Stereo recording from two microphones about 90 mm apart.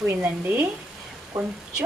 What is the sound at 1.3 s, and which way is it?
Speech, 35° right (ahead or behind).